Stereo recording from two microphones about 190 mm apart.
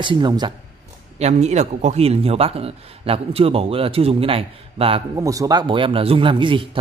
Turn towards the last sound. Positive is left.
turn(degrees=-25)  # may be behind; listen again after turning